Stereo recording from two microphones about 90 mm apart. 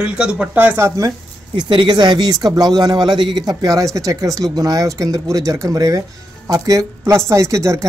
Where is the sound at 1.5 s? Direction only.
60° right (ahead or behind).